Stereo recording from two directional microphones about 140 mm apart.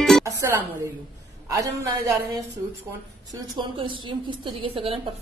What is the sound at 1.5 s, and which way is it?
Speech, 25° right (ahead or behind).